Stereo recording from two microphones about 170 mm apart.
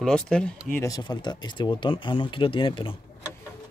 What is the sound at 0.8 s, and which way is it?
Speech, 25° left (ahead or behind).